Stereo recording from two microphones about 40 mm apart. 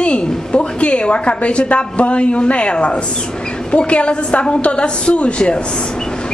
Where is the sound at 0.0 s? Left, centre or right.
Left.